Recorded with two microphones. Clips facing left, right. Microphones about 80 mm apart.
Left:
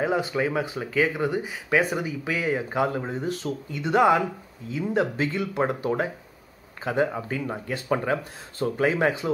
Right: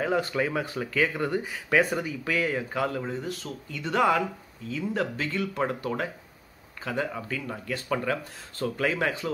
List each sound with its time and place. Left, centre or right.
0.0 s speech: centre